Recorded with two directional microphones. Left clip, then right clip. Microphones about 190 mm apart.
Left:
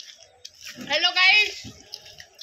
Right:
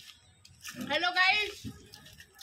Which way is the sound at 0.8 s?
65° right (ahead or behind).